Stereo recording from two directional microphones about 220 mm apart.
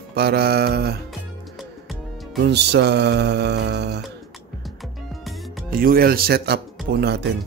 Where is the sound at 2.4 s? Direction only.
50° right (ahead or behind).